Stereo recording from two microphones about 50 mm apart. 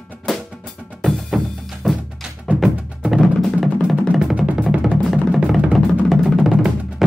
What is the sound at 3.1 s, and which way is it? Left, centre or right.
Music, centre.